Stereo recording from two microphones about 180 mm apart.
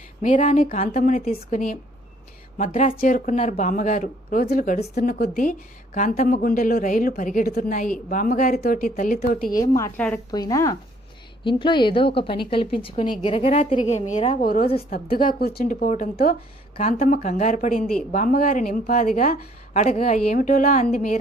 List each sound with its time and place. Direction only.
0.2 s speech: 45° left (ahead or behind)
5.9 s speech: 45° left (ahead or behind)
9.8 s a woman's voice: 10° left (ahead or behind)
10.3 s a woman's voice: 20° left (ahead or behind); by 21.2 s 45° left (ahead or behind)